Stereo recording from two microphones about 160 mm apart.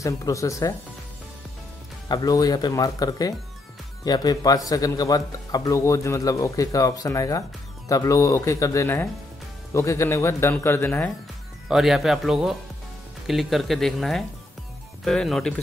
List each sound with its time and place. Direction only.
0.0 s speech: 20° left (ahead or behind)
2.0 s a man's voice: 25° left (ahead or behind)
11.7 s speech: centre (ahead or behind)